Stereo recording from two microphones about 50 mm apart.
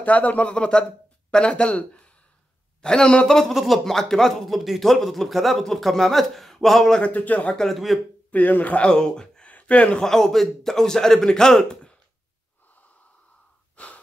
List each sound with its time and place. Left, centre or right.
0.0 s a man's voice: left
3.5 s speech: centre
7.0 s a man's voice: left
7.5 s speech: centre
8.3 s a man's voice: left
8.8 s speech: centre
9.5 s speech: left
10.0 s a man's voice: centre
13.8 s breathing: left